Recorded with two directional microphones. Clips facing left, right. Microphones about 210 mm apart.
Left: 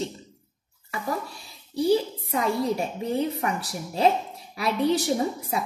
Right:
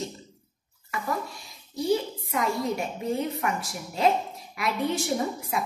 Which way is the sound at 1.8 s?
30° left (ahead or behind).